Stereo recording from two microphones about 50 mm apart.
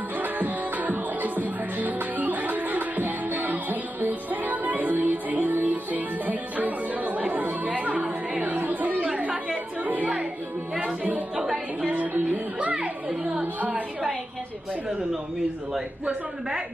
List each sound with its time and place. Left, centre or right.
0.2 s music: right
8.4 s yodeling: right
9.0 s chatter: right
9.8 s music: right
11.3 s music: centre
11.9 s music: right
13.4 s a sound: right
15.7 s a man's voice: centre